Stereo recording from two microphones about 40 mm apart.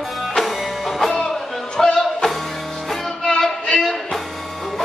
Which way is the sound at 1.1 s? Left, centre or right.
Centre.